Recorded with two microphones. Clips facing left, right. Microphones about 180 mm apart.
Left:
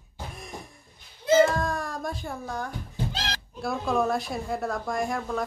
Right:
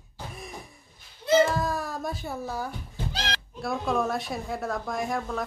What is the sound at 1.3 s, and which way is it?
Baby cry, centre (ahead or behind).